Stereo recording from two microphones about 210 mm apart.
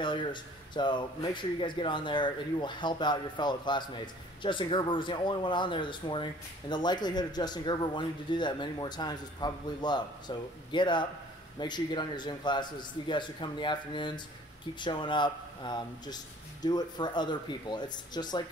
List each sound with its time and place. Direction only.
0.0 s a man's voice: 20° left (ahead or behind)